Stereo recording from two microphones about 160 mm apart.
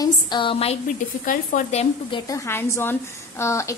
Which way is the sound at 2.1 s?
20° left (ahead or behind).